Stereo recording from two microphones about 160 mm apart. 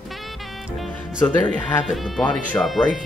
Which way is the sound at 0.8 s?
5° left (ahead or behind).